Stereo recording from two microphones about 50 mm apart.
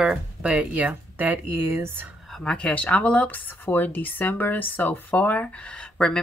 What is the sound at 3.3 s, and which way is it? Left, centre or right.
Speech, left.